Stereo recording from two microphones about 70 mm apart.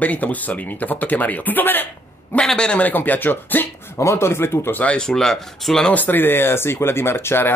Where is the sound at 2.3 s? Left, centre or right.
Centre.